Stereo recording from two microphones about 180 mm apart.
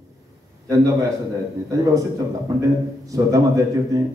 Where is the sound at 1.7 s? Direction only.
20° right (ahead or behind).